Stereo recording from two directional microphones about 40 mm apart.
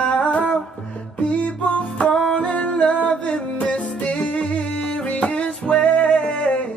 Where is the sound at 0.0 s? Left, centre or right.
Left.